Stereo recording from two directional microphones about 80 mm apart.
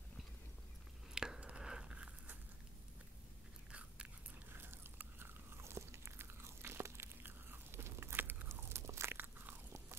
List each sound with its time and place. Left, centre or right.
1.1 s a sound: centre
4.5 s biting: right
9.2 s biting: right